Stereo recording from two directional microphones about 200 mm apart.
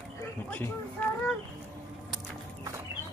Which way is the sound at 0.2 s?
10° left (ahead or behind).